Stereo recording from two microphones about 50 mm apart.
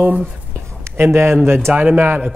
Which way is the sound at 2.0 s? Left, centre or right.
Right.